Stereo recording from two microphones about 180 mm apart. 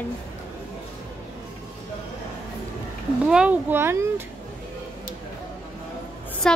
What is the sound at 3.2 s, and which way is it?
Speech, 5° right (ahead or behind).